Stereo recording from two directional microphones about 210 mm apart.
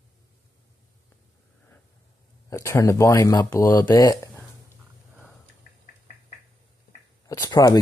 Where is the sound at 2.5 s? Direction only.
15° left (ahead or behind).